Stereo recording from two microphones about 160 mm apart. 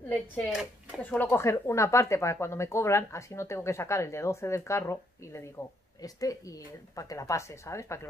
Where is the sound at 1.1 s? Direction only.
15° left (ahead or behind).